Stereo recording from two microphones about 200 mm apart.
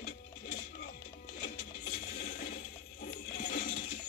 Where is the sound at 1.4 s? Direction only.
60° left (ahead or behind).